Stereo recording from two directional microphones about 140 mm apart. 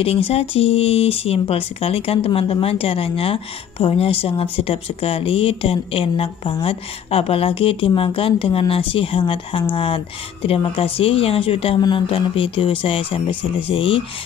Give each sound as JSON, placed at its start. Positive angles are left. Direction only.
{"t": 0.0, "sound": "speech", "side_deg": 45}